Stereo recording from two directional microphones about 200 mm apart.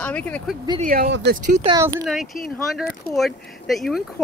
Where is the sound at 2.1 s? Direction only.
Centre (ahead or behind).